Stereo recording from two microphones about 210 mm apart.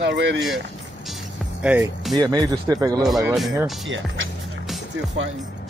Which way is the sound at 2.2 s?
20° right (ahead or behind).